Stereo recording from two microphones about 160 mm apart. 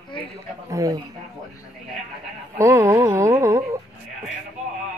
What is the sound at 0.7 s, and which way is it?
Speech, 20° right (ahead or behind).